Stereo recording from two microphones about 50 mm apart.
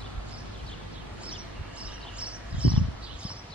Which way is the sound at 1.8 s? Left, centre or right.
Right.